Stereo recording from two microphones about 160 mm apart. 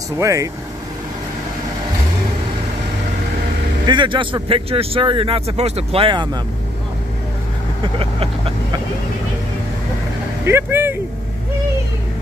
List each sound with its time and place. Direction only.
0.2 s speech: 20° right (ahead or behind)
3.8 s speech: 30° right (ahead or behind)
8.0 s speech: 35° right (ahead or behind)
10.4 s speech: 15° right (ahead or behind)